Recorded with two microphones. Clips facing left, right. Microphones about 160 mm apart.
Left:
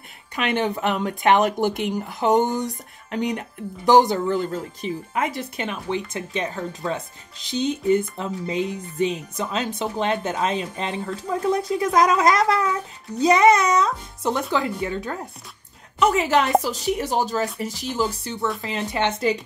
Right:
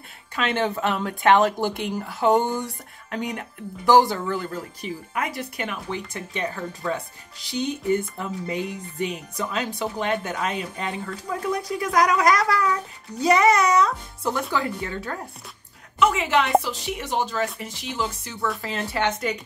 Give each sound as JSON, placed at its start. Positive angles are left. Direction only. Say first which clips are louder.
{"t": 0.4, "sound": "speech", "louder": "left 1 dB", "side_deg": 15}
{"t": 16.0, "sound": "speech", "louder": "left 2 dB", "side_deg": 40}
{"t": 18.6, "sound": "speech", "louder": "left 1 dB", "side_deg": 20}